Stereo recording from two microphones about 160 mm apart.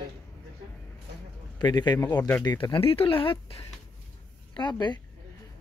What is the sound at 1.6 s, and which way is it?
Speech, 25° left (ahead or behind).